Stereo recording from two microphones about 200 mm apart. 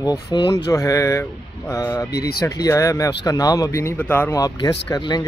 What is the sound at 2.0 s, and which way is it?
Speech, 50° left (ahead or behind).